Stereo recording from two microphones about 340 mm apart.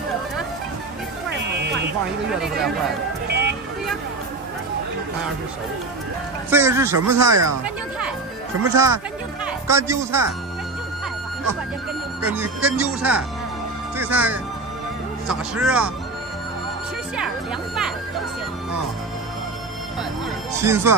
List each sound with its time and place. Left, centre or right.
1.6 s a sound: right
3.3 s vehicle: right
6.5 s speech: centre
12.3 s speech: centre
20.6 s speech: centre